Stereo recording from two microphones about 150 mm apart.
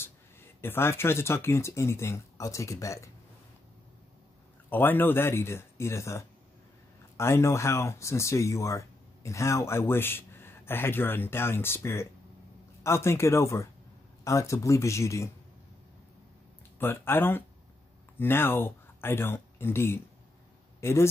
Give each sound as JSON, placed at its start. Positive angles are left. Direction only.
{"t": 0.6, "sound": "speech", "side_deg": 15}
{"t": 4.6, "sound": "speech", "side_deg": 15}
{"t": 16.8, "sound": "speech", "side_deg": 15}